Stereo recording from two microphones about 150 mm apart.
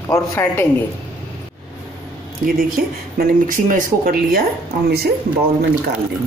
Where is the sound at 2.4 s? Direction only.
80° right.